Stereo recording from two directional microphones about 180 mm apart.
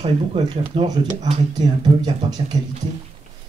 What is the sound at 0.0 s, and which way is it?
Speech, 30° right (ahead or behind).